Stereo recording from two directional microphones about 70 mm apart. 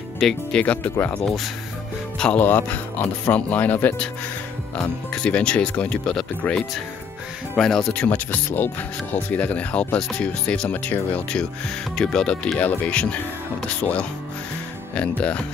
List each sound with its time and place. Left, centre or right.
0.2 s speech: centre
0.6 s speech: centre
1.2 s speech: centre
2.1 s speech: centre
2.4 s speech: left
5.1 s speech: centre
7.9 s speech: centre
8.5 s speech: left
9.9 s speech: centre